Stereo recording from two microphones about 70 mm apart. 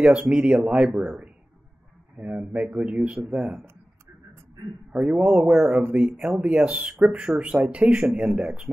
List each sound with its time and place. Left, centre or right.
0.0 s speech: centre
4.9 s speech: centre